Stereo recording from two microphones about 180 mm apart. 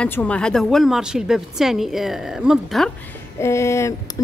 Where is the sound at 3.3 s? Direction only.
15° left (ahead or behind).